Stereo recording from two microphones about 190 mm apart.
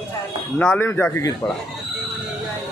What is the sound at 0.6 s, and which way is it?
Speech, 5° left (ahead or behind).